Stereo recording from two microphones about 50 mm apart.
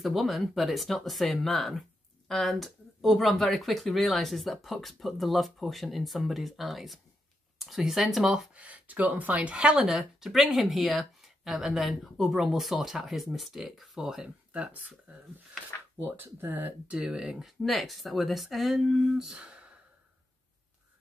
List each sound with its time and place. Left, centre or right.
0.0 s speech: centre
8.5 s speech: right
9.8 s speech: centre
14.5 s speech: right
16.0 s speech: right
16.8 s speech: centre
17.4 s speech: centre
19.1 s speech: centre